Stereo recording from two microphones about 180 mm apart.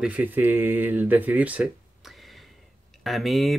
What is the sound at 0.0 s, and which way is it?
Speech, 10° right (ahead or behind).